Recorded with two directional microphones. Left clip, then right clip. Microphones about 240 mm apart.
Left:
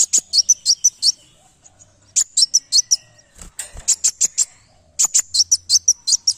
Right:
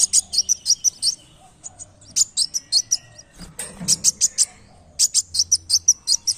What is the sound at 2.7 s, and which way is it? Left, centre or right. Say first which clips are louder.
Chirp: left 4 dB; left.